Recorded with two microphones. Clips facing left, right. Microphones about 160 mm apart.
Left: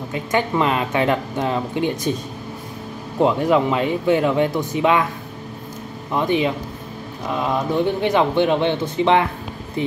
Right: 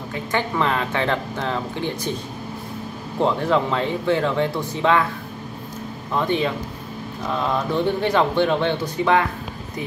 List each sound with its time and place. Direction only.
0.1 s a man's voice: 15° left (ahead or behind)
3.2 s a man's voice: 15° left (ahead or behind)
6.1 s a man's voice: 15° left (ahead or behind)